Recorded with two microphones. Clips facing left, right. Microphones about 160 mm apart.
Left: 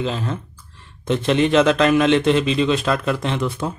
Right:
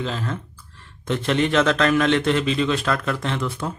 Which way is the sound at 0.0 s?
20° left (ahead or behind).